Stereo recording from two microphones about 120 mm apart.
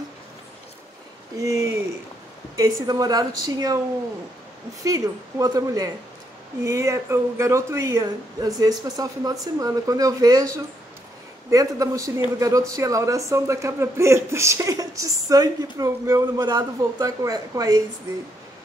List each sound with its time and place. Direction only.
1.4 s a woman's voice: 30° right (ahead or behind)
4.8 s speech: 25° right (ahead or behind)
11.5 s speech: 30° right (ahead or behind)